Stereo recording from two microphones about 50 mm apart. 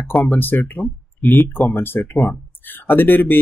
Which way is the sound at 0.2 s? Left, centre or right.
Left.